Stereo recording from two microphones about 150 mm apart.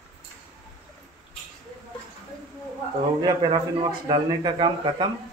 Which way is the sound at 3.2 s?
30° right (ahead or behind).